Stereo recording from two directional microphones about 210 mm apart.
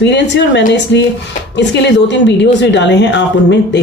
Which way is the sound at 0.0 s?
55° left (ahead or behind).